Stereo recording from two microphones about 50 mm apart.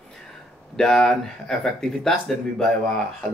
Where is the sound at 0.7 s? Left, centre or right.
Centre.